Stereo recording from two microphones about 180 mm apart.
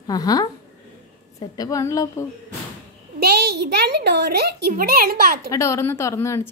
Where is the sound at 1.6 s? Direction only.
15° left (ahead or behind).